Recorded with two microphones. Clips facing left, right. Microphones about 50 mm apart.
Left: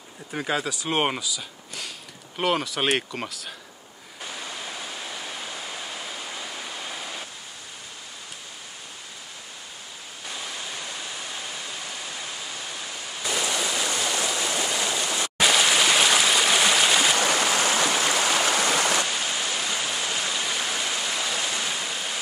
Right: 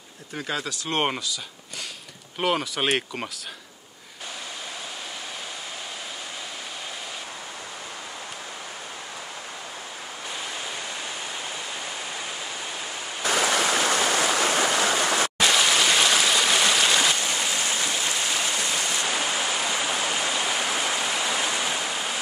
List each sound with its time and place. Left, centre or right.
0.3 s speech: centre
13.2 s stream: right
15.3 s stream: centre
17.1 s stream: left
19.0 s stream: centre